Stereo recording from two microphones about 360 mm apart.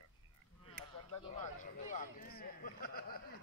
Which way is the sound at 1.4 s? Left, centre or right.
Left.